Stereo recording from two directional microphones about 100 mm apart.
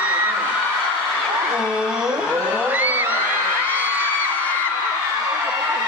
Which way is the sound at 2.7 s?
15° right (ahead or behind).